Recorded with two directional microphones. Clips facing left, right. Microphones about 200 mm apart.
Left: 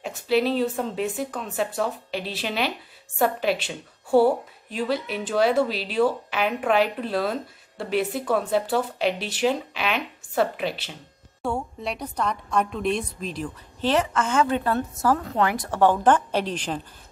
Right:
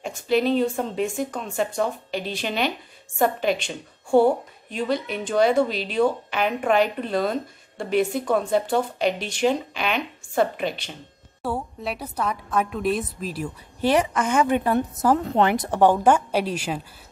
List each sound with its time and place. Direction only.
0.0 s a woman's voice: 5° left (ahead or behind)